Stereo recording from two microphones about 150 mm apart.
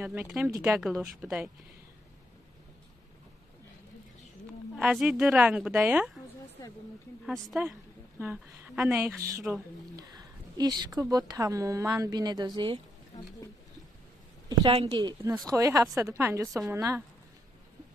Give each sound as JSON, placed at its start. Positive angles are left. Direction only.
{"t": 0.0, "sound": "a woman's voice", "side_deg": -10}
{"t": 4.7, "sound": "a woman's voice", "side_deg": -5}
{"t": 7.2, "sound": "a woman's voice", "side_deg": -5}
{"t": 14.6, "sound": "a woman's voice", "side_deg": -40}